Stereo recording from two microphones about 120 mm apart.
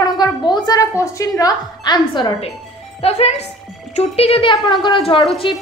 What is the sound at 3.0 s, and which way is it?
Speech, 60° left (ahead or behind).